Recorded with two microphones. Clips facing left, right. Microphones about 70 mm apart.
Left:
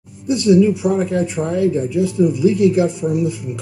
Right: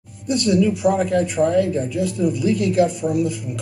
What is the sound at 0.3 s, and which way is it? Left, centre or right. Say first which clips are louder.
Speech: left 5 dB; centre.